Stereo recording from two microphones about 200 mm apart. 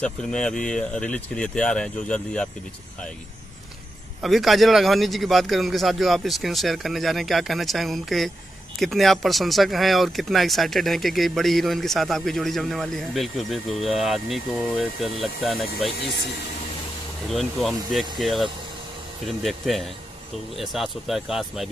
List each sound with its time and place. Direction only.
0.0 s speech: 5° left (ahead or behind)
4.2 s speech: centre (ahead or behind)
16.0 s speech: 55° left (ahead or behind)
17.3 s speech: centre (ahead or behind)